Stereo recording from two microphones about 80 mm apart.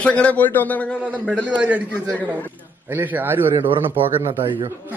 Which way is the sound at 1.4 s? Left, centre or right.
Centre.